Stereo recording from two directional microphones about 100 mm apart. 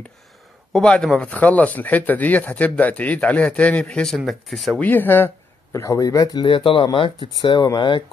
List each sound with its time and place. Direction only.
0.7 s speech: 5° left (ahead or behind)
4.7 s speech: 20° left (ahead or behind); by 6.4 s 40° left (ahead or behind)
6.4 s speech: 60° left (ahead or behind)